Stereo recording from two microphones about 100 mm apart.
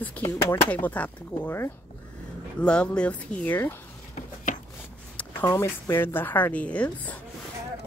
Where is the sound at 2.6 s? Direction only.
10° left (ahead or behind).